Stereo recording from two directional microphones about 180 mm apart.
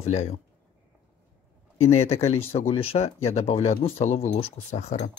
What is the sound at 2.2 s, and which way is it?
Speech, 35° left (ahead or behind).